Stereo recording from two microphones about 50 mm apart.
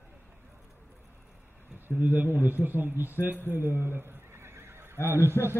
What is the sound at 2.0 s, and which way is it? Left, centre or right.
Speech, right.